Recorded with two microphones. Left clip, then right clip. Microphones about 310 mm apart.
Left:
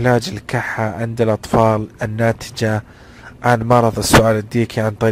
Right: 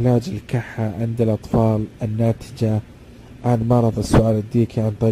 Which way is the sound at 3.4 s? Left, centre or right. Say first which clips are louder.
Left 6 dB; left.